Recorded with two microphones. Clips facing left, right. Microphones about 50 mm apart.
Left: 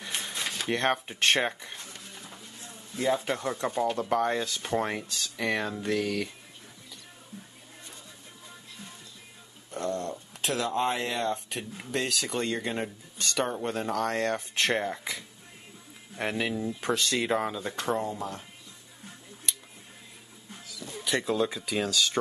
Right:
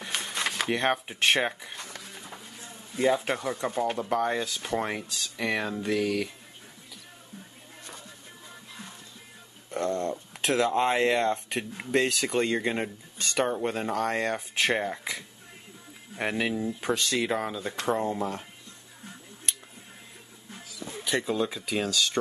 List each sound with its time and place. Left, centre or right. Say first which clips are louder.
0.3 s a sound: right 7 dB; right
0.7 s speech: left 2 dB; centre
3.1 s speech: right 1 dB; centre
9.7 s a sound: right 3 dB; right
10.4 s speech: right 4 dB; right; by 17.9 s centre
18.0 s speech: right 4 dB; right
21.0 s speech: even; centre